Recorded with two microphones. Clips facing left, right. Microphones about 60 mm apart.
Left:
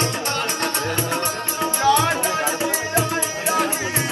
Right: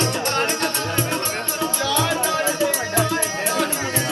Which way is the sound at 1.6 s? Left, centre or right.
Left.